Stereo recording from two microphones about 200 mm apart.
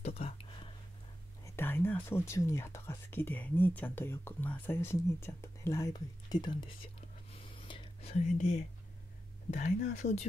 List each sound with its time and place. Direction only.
0.0 s whispering: 30° left (ahead or behind)
1.4 s speech: 10° left (ahead or behind)
7.0 s whispering: 25° left (ahead or behind)
9.8 s speech: 35° left (ahead or behind)